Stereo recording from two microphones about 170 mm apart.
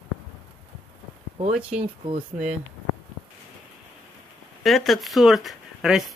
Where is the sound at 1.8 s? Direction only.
30° right (ahead or behind).